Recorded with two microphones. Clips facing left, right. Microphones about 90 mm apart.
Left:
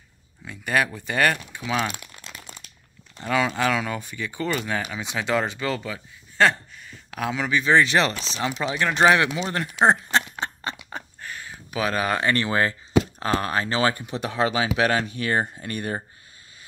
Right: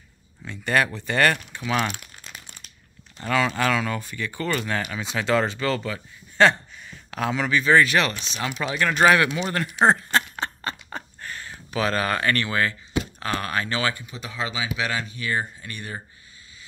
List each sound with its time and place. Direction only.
0.5 s speech: 10° left (ahead or behind)
3.3 s speech: 10° left (ahead or behind)
8.5 s speech: 25° left (ahead or behind)
9.8 s a sound: 15° left (ahead or behind)
13.2 s speech: 30° left (ahead or behind)
14.0 s speech: 60° left (ahead or behind)